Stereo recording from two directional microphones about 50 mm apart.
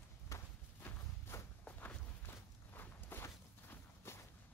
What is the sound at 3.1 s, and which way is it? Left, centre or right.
Walk, left.